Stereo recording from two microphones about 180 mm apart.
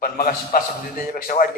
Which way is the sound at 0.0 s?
50° left (ahead or behind).